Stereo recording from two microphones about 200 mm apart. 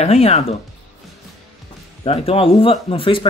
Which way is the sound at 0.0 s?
30° left (ahead or behind).